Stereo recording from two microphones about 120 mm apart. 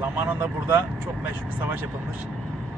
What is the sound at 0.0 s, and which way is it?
Speech, 15° right (ahead or behind).